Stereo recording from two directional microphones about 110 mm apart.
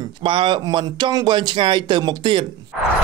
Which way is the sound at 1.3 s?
50° right (ahead or behind).